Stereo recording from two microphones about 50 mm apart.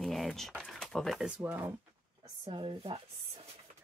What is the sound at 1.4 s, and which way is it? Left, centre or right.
Speech, right.